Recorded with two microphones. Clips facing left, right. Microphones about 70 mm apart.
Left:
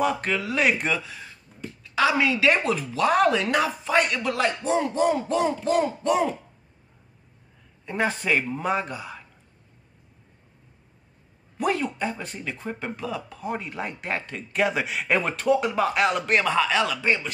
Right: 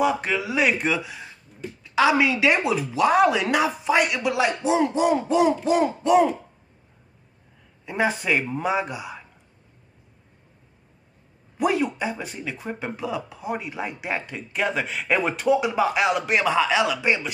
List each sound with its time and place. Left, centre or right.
0.0 s a man's voice: centre
1.0 s speech: centre
7.8 s a man's voice: centre
11.5 s speech: centre